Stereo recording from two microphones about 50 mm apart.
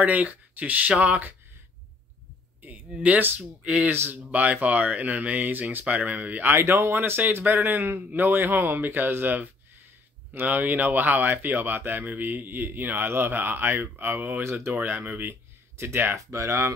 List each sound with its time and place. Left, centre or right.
0.0 s speech: right
2.6 s speech: right; by 3.9 s centre
4.1 s speech: right
6.5 s a man's voice: right
14.4 s speech: right
14.7 s speech: right
15.8 s a man's voice: right
16.3 s speech: right